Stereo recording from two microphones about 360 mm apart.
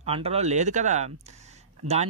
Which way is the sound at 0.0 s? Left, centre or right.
Centre.